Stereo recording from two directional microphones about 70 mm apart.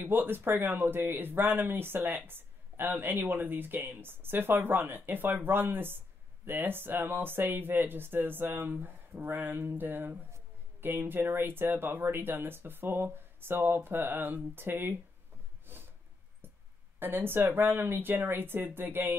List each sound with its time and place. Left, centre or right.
0.0 s speech: right
15.6 s a sound: right
17.0 s a woman's voice: right